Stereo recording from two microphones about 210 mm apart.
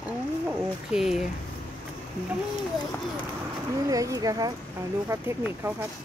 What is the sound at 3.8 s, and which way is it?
Speech, 15° right (ahead or behind).